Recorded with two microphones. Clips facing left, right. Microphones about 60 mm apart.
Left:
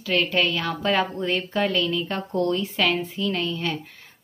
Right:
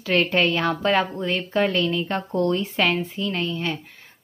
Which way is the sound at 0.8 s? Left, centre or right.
Centre.